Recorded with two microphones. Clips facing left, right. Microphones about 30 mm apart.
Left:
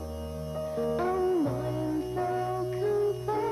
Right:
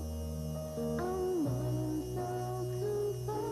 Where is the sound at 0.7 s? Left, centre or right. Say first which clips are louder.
Left 7 dB; left.